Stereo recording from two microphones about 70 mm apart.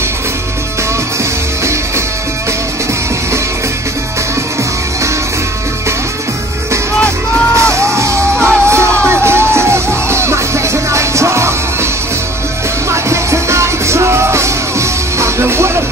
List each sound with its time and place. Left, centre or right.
1.6 s music: right
7.5 s music: right
12.9 s music: right